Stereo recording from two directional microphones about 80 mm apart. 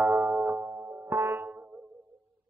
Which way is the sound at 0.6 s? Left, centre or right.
Right.